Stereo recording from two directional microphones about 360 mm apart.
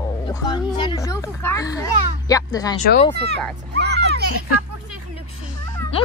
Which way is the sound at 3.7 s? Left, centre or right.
Right.